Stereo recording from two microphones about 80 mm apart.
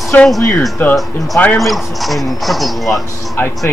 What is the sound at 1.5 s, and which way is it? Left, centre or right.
Speech, centre.